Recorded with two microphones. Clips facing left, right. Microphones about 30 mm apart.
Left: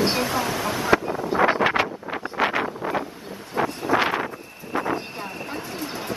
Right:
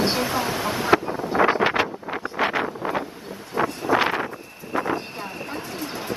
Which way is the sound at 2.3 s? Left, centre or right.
Left.